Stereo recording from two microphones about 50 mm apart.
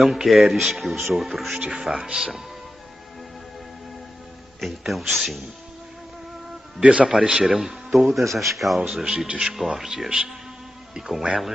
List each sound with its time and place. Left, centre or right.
0.0 s speech: centre
4.6 s speech: centre
6.8 s a man's voice: right
7.2 s speech: centre